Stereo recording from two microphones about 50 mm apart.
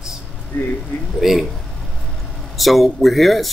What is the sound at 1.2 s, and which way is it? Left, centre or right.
Speech, centre.